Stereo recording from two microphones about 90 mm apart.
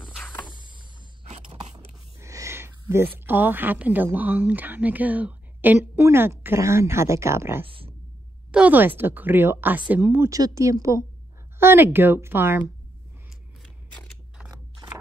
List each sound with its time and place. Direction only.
0.2 s vehicle: 20° left (ahead or behind)
2.1 s a woman's voice: 35° right (ahead or behind)
7.6 s a sound: 85° right
8.5 s speech: 15° right (ahead or behind)
10.3 s speech: 40° right (ahead or behind)